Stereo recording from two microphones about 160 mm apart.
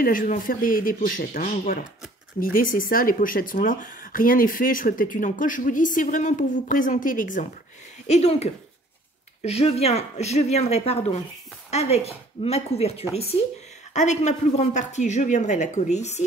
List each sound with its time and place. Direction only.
0.0 s speech: 60° left (ahead or behind)
8.1 s speech: 40° left (ahead or behind)